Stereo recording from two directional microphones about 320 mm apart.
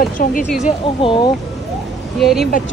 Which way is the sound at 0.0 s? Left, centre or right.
Left.